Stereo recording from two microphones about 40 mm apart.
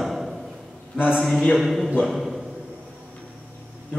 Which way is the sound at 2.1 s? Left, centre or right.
Centre.